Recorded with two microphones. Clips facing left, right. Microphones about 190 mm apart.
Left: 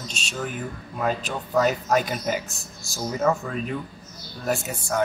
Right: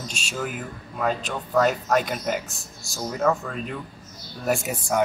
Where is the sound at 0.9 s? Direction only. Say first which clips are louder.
Even; 5° left (ahead or behind).